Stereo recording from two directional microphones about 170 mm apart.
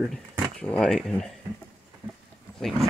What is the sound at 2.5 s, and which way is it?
Roaring cats, centre (ahead or behind).